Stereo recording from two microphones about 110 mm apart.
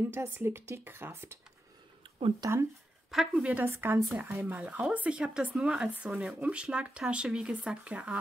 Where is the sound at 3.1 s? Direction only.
Centre (ahead or behind).